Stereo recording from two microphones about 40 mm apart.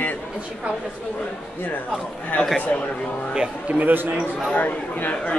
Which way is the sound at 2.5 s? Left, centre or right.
Left.